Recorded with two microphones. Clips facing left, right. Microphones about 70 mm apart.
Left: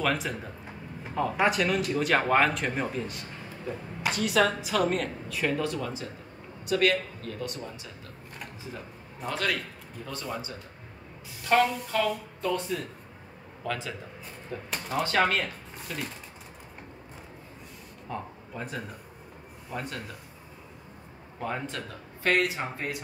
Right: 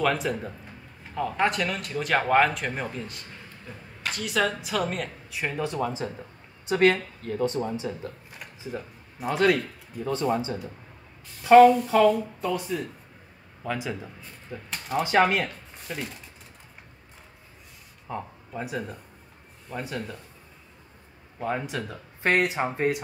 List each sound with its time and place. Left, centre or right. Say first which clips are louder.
0.0 s speech: right 3 dB; centre
5.3 s speech: left 1 dB; centre
8.4 s a sound: right 4 dB; centre
9.3 s speech: right 8 dB; right
11.4 s speech: right 10 dB; centre
13.7 s speech: right 3 dB; centre
15.4 s speech: right 1 dB; centre
18.0 s speech: right 2 dB; centre
21.4 s speech: right 4 dB; centre
22.2 s speech: right 3 dB; right